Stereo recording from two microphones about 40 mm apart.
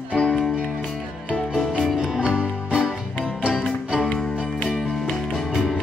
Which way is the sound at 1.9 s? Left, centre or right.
Centre.